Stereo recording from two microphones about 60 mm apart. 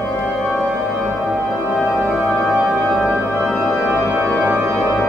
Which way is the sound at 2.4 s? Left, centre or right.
Centre.